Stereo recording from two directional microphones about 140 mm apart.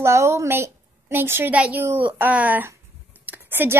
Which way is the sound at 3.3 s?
15° right (ahead or behind).